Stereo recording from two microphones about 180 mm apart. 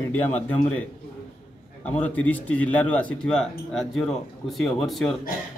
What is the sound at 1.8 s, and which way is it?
A man's voice, 10° left (ahead or behind).